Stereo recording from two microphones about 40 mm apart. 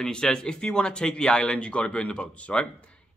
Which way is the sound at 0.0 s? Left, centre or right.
Centre.